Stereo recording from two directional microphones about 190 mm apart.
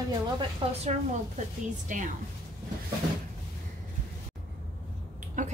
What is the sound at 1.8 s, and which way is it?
Speech, 40° right (ahead or behind).